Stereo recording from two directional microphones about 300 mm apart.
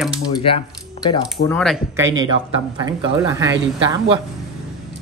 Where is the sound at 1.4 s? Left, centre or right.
Centre.